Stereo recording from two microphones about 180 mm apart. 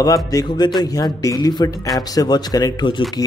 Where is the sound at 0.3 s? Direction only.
20° left (ahead or behind).